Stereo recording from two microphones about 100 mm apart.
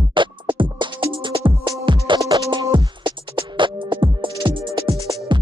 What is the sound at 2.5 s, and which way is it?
Music, 50° right (ahead or behind).